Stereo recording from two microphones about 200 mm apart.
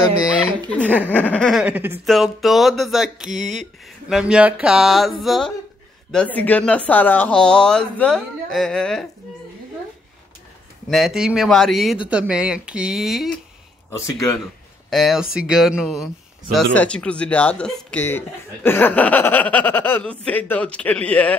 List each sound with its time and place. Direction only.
0.7 s speech: 5° left (ahead or behind)
10.9 s speech: centre (ahead or behind)
13.8 s speech: 15° left (ahead or behind)
14.9 s speech: centre (ahead or behind)